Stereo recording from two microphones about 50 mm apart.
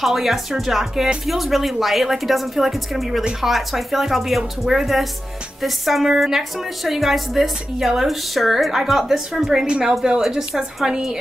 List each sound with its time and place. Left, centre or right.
0.0 s a woman's voice: centre
9.7 s a woman's voice: centre